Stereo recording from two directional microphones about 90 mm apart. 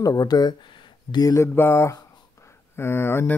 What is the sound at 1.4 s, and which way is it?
Speech, 30° left (ahead or behind).